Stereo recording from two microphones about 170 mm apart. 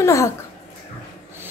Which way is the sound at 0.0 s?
15° left (ahead or behind).